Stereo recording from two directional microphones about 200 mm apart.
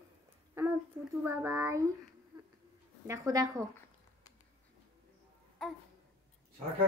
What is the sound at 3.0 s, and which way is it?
Speech, 15° right (ahead or behind).